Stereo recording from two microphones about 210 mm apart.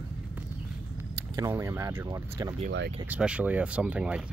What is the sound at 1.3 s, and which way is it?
Speech, 15° right (ahead or behind).